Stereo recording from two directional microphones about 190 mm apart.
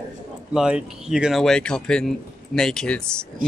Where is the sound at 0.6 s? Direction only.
5° right (ahead or behind).